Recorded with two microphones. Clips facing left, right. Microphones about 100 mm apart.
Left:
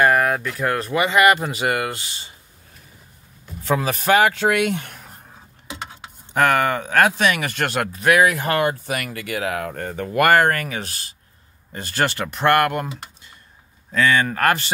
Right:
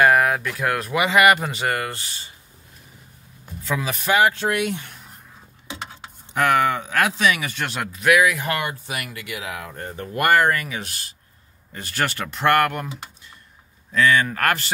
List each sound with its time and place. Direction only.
0.1 s speech: centre (ahead or behind)
1.6 s speech: 15° left (ahead or behind)
3.6 s speech: 45° left (ahead or behind)
4.2 s speech: 90° left; by 5.1 s 55° left (ahead or behind)
6.3 s speech: 50° left (ahead or behind)
8.0 s speech: 40° left (ahead or behind)
11.7 s speech: 30° left (ahead or behind)
13.9 s speech: 30° left (ahead or behind)